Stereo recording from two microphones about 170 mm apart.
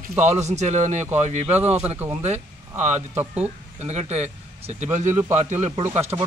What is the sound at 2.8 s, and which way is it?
Speech, 45° right (ahead or behind).